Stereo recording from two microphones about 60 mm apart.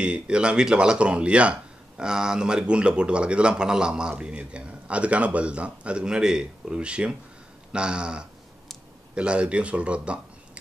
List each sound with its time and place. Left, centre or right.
0.0 s a man's voice: centre